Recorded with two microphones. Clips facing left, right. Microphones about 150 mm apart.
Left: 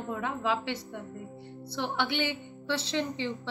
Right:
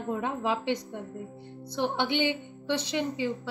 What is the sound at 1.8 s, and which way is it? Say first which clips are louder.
Speech: right 3 dB; 20° right (ahead or behind).